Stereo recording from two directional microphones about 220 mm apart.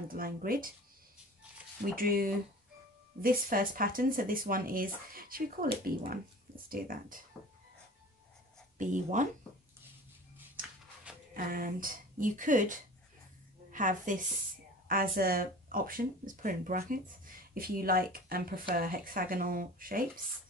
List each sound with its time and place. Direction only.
0.1 s speech: 40° right (ahead or behind)
2.0 s speech: 40° right (ahead or behind)
8.7 s speech: 35° right (ahead or behind)
11.3 s a woman's voice: 40° right (ahead or behind)